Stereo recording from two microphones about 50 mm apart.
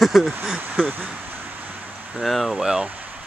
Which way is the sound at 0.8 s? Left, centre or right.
Centre.